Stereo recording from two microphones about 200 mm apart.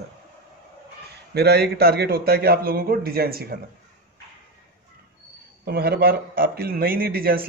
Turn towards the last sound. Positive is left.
turn(degrees=-50)  # may be behind; listen again after turning